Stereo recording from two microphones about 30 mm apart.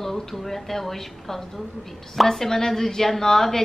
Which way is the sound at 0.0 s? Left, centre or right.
Centre.